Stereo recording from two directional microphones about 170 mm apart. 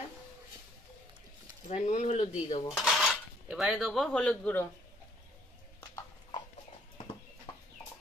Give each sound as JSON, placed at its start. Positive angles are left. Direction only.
{"t": 1.7, "sound": "speech", "side_deg": 40}
{"t": 2.7, "sound": "cutlery", "side_deg": 0}